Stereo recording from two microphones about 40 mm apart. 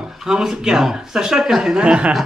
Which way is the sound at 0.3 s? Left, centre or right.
Centre.